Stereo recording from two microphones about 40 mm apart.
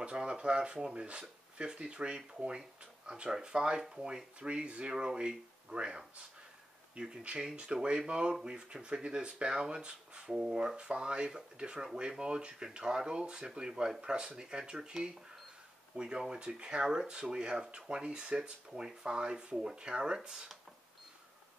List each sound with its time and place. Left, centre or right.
0.0 s speech: right
10.8 s speech: right
16.0 s speech: centre